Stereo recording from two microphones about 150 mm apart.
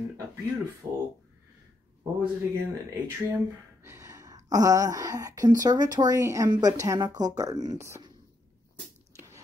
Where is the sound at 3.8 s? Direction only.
20° right (ahead or behind).